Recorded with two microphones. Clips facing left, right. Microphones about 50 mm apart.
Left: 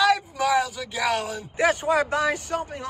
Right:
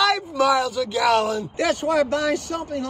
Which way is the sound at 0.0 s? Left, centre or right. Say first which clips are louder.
Right 2 dB; right.